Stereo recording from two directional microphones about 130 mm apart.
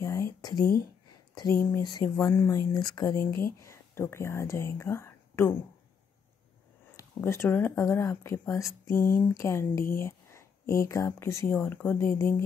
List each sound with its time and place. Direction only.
0.0 s a sound: 25° left (ahead or behind)
1.3 s speech: 30° left (ahead or behind)
2.3 s speech: 20° left (ahead or behind)
2.7 s speech: 35° left (ahead or behind)
3.6 s speech: 20° left (ahead or behind)
7.0 s speech: 20° left (ahead or behind)